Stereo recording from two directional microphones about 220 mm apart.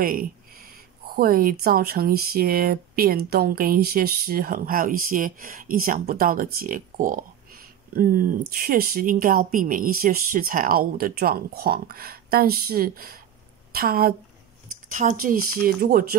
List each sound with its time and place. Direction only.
1.1 s a woman's voice: 40° right (ahead or behind)